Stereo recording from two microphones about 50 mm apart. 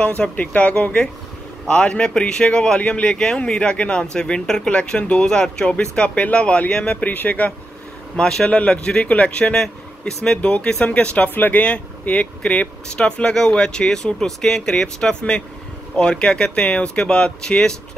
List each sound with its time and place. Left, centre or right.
0.4 s speech: left
8.2 s speech: centre
8.5 s speech: left
9.6 s speech: centre; by 11.6 s left
11.6 s speech: left